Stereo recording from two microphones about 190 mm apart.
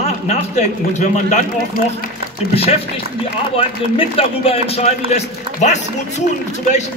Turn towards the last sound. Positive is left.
turn(degrees=40)  # may be behind; listen again after turning